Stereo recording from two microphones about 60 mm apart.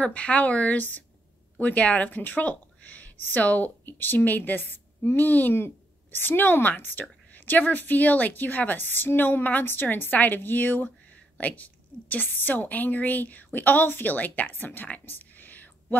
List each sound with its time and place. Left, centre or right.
0.0 s a woman's voice: left